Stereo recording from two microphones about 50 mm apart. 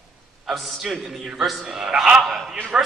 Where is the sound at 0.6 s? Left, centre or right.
Centre.